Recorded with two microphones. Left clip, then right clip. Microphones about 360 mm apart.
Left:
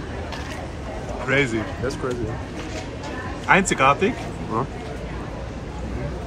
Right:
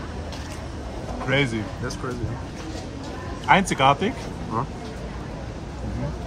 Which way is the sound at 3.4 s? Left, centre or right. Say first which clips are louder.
Left 1 dB; centre.